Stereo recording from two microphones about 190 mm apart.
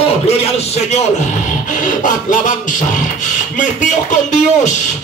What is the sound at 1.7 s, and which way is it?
Beatboxing, 45° left (ahead or behind).